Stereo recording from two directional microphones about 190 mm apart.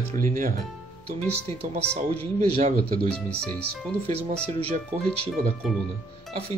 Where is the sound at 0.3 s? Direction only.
45° right (ahead or behind).